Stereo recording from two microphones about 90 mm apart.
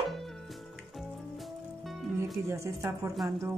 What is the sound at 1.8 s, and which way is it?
Music, centre (ahead or behind).